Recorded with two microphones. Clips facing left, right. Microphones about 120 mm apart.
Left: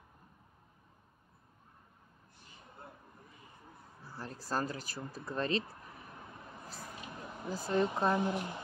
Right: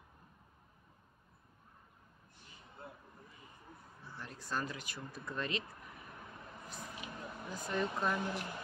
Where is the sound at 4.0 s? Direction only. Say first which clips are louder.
Left 4 dB; 35° left (ahead or behind).